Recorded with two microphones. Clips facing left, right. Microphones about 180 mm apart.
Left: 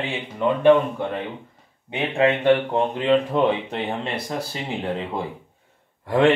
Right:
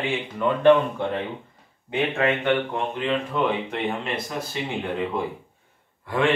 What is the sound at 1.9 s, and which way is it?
Speech, 30° left (ahead or behind).